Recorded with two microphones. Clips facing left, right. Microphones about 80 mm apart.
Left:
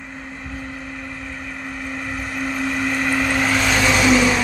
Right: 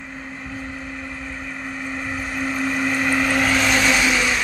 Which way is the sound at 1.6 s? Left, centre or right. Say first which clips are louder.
Even; centre.